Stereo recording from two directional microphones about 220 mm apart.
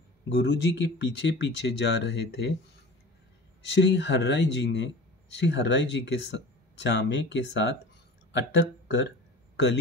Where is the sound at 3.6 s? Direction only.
55° left (ahead or behind).